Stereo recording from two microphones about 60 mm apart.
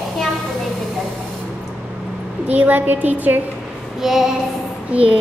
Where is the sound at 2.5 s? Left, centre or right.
Right.